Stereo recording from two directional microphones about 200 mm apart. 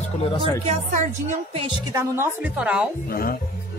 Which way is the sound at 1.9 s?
15° right (ahead or behind).